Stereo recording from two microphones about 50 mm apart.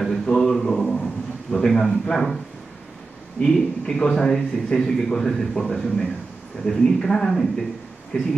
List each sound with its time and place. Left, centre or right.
0.2 s a sound: centre
2.0 s a man's voice: centre
3.3 s speech: centre